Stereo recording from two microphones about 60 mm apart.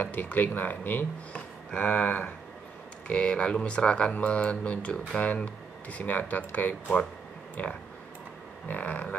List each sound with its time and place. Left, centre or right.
0.0 s speech: left
1.3 s speech: centre